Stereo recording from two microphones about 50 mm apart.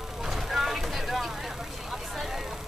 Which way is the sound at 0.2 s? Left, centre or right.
Centre.